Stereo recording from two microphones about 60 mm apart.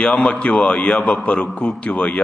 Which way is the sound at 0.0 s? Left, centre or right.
Left.